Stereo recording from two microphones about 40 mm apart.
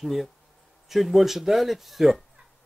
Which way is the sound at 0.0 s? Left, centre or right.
Centre.